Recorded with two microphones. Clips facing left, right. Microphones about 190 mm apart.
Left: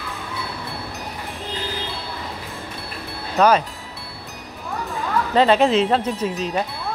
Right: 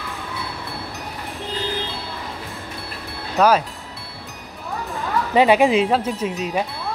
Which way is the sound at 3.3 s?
5° right (ahead or behind).